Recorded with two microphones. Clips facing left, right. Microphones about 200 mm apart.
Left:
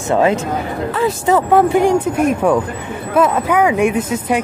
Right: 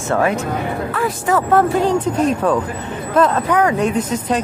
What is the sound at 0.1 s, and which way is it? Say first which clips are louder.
A woman's voice: left 3 dB; 20° left (ahead or behind).